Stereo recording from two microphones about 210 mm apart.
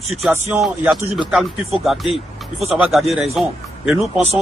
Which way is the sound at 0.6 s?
Centre (ahead or behind).